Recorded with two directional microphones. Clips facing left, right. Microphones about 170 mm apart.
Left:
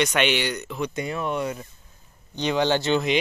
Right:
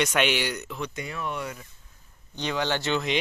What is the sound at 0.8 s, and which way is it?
Speech, 25° left (ahead or behind).